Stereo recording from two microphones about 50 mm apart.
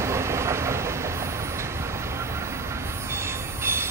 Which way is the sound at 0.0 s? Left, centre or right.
Right.